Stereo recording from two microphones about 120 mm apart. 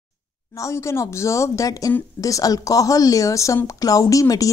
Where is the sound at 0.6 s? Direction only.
25° left (ahead or behind).